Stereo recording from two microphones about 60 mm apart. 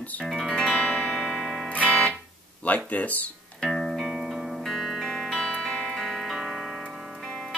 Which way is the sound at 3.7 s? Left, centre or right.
Centre.